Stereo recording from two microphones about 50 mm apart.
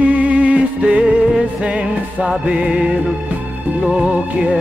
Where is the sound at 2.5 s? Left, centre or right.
Centre.